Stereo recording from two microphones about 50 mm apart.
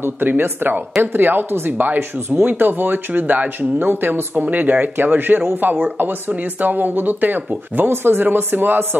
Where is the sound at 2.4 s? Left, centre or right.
Right.